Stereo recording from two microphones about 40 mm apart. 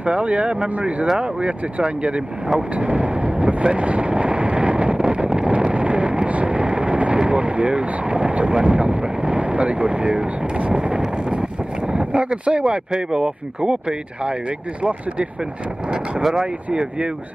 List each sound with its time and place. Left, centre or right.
0.0 s speech: right
1.1 s speech: right
2.7 s vehicle: right
7.2 s speech: right
16.3 s speech: right